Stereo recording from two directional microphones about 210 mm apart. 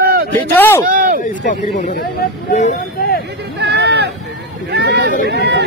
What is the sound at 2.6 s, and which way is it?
Vehicle, 35° left (ahead or behind).